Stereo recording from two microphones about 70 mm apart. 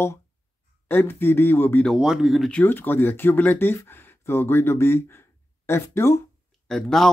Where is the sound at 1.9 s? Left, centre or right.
Centre.